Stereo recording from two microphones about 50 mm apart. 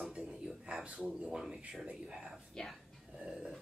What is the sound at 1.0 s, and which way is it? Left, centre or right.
Speech, centre.